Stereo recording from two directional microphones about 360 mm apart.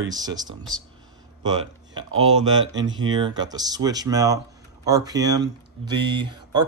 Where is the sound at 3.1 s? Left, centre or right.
Centre.